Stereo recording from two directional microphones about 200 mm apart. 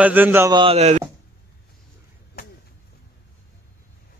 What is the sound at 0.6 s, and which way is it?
Speech, 30° right (ahead or behind).